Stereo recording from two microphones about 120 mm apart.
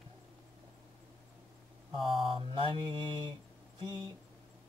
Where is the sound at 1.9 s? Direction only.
45° right (ahead or behind).